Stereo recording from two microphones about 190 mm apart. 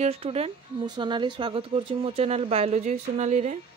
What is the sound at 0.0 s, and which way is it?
Speech, 30° right (ahead or behind).